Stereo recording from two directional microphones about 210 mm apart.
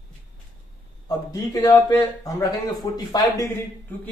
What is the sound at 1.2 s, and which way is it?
A man's voice, 15° left (ahead or behind).